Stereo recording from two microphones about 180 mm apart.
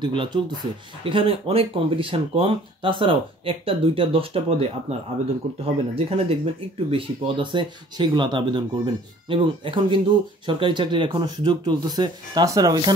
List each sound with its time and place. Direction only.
0.0 s speech: 25° right (ahead or behind)